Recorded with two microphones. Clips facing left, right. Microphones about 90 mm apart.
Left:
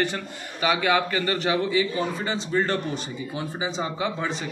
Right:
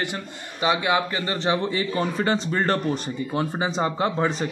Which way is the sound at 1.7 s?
50° right (ahead or behind).